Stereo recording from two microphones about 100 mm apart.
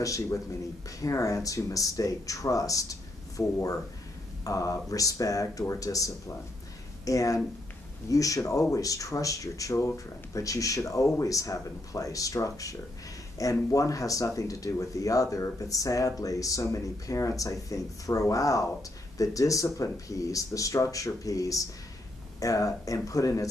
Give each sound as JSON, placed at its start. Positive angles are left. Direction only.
{"t": 0.0, "sound": "speech", "side_deg": 35}